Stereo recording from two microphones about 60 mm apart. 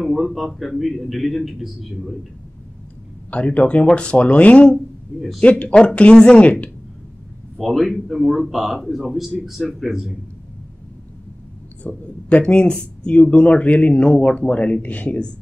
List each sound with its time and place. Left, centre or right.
0.0 s a man's voice: centre
3.3 s speech: left
4.7 s speech: centre
5.4 s a woman's voice: left
7.5 s a man's voice: centre
11.8 s speech: left